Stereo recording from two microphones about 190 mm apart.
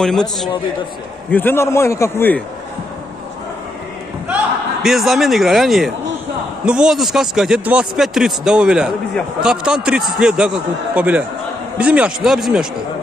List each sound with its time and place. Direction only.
0.0 s a man's voice: centre (ahead or behind)
4.8 s speech: centre (ahead or behind)